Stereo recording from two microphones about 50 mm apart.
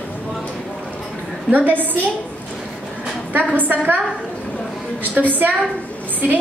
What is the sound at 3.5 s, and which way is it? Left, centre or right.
A woman's voice, right.